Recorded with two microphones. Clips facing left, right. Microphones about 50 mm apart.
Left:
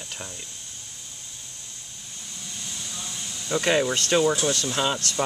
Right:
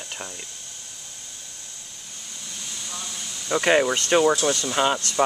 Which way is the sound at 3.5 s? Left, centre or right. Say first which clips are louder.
Right 3 dB; right.